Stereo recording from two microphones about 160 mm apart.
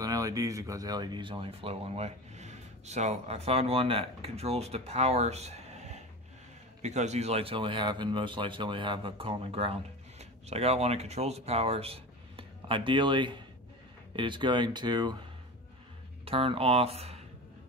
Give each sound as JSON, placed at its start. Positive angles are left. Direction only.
{"t": 0.0, "sound": "speech", "side_deg": -20}
{"t": 16.3, "sound": "speech", "side_deg": -35}